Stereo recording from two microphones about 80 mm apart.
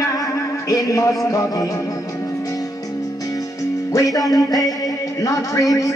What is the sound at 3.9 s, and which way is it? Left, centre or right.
Speech, left.